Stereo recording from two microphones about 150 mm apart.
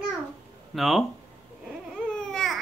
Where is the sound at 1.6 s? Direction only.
5° left (ahead or behind).